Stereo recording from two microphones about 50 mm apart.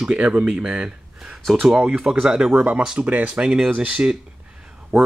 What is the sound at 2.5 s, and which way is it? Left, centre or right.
Speech, right.